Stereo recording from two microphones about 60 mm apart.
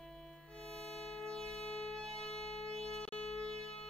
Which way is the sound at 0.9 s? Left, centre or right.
Centre.